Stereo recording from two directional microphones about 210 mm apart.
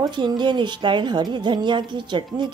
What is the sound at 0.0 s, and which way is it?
Speech, 20° right (ahead or behind).